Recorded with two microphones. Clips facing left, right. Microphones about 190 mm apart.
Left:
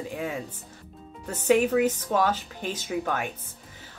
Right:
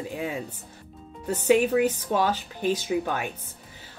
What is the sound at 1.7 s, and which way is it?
Speech, 10° right (ahead or behind).